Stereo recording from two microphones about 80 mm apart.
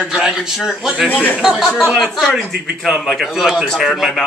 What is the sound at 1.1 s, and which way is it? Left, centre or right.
Speech, left.